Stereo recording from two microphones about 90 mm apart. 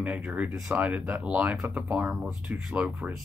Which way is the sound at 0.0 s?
15° right (ahead or behind).